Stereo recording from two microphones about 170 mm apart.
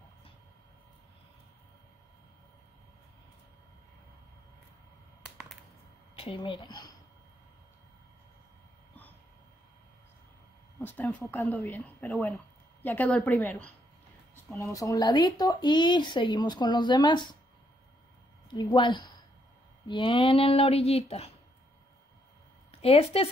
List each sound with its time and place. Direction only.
6.1 s a sound: 35° left (ahead or behind)
6.4 s speech: 25° left (ahead or behind)
10.9 s a woman's voice: 10° left (ahead or behind)
12.1 s a woman's voice: centre (ahead or behind); by 17.4 s 25° left (ahead or behind)
18.5 s speech: 25° left (ahead or behind)
22.7 s a woman's voice: 35° left (ahead or behind)